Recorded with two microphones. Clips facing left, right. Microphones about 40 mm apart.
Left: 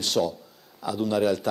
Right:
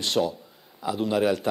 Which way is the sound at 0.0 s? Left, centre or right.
Centre.